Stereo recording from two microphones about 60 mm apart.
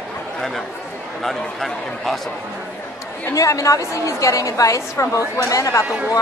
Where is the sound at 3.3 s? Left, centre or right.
Left.